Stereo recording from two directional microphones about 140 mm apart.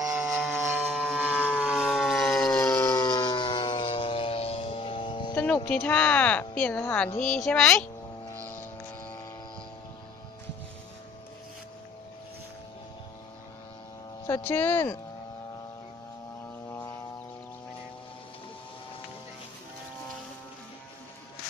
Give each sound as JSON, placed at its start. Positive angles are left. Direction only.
{"t": 0.0, "sound": "a sound", "side_deg": -20}
{"t": 0.9, "sound": "vehicle", "side_deg": -5}
{"t": 1.6, "sound": "siren", "side_deg": -5}
{"t": 5.3, "sound": "music", "side_deg": 10}
{"t": 5.7, "sound": "a woman's voice", "side_deg": 10}
{"t": 14.2, "sound": "speech", "side_deg": 15}
{"t": 16.6, "sound": "a sound", "side_deg": 20}